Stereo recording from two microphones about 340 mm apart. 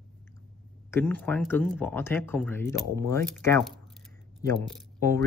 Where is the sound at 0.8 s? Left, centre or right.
Centre.